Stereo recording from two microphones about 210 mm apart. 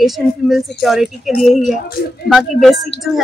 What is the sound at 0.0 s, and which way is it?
Speech, centre (ahead or behind).